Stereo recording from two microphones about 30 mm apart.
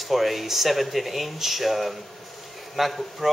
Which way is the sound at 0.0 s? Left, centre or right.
Centre.